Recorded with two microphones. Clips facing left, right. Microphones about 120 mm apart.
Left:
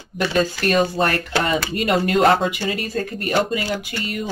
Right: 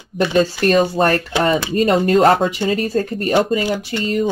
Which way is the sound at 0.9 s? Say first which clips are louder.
Right 5 dB; 40° right (ahead or behind).